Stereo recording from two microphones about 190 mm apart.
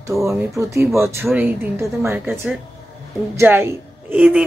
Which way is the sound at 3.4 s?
10° right (ahead or behind).